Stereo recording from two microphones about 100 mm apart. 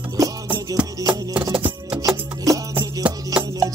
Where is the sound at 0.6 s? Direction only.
40° right (ahead or behind).